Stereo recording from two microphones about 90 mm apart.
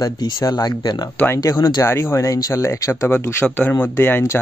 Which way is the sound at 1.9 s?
30° left (ahead or behind).